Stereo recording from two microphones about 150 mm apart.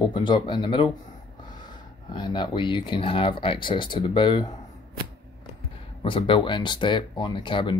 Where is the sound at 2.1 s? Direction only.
30° left (ahead or behind).